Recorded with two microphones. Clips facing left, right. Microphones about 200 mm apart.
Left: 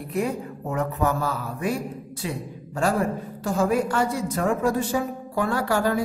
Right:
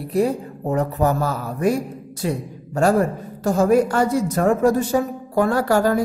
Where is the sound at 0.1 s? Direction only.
35° right (ahead or behind).